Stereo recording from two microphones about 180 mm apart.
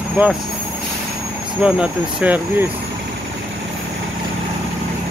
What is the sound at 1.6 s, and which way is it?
Speech, 5° right (ahead or behind).